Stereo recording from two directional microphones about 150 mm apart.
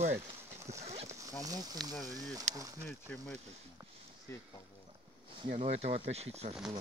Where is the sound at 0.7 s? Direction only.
45° right (ahead or behind).